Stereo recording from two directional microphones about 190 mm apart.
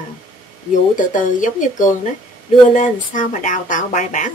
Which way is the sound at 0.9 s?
45° left (ahead or behind).